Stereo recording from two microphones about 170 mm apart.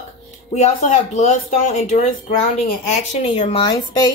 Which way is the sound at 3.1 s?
40° left (ahead or behind).